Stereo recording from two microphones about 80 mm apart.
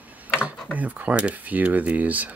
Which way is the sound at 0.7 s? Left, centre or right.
Centre.